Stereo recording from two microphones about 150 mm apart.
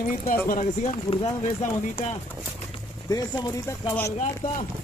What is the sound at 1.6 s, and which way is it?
Speech, 50° left (ahead or behind).